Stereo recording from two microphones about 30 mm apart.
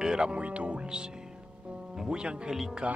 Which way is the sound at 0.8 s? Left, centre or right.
Right.